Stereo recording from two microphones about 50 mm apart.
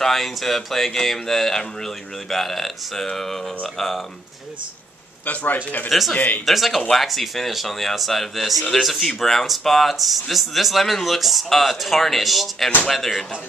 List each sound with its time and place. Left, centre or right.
0.0 s speech: centre
5.2 s a man's voice: left
5.9 s speech: centre
6.1 s a man's voice: left
6.4 s speech: centre